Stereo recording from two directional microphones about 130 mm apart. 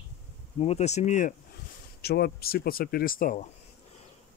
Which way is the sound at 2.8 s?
90° left.